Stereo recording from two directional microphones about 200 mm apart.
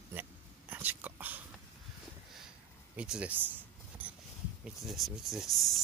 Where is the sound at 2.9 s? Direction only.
5° right (ahead or behind).